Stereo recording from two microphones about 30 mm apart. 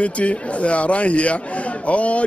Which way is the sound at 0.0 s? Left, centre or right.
Left.